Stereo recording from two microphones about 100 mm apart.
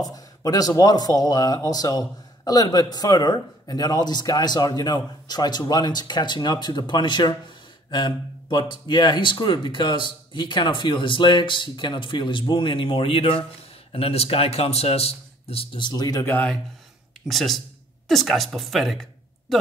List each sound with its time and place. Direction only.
0.0 s speech: 35° left (ahead or behind); by 13.5 s 65° left (ahead or behind)
13.9 s speech: 85° left
15.8 s speech: 40° left (ahead or behind)
16.3 s speech: 15° left (ahead or behind)
17.3 s speech: centre (ahead or behind)